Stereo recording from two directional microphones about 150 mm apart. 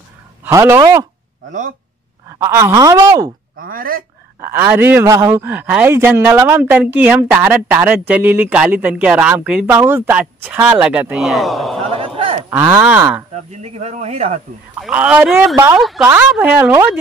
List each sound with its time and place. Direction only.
0.5 s speech: 20° right (ahead or behind)
2.2 s speech: 20° right (ahead or behind)
3.6 s speech: 70° right (ahead or behind)
4.4 s a man's voice: 15° right (ahead or behind)
11.8 s a sound: 40° right (ahead or behind)
12.4 s a man's voice: 15° right (ahead or behind)
13.3 s speech: 50° right (ahead or behind)
14.8 s a man's voice: 10° right (ahead or behind)
15.8 s speech: centre (ahead or behind)
16.1 s a man's voice: 10° right (ahead or behind)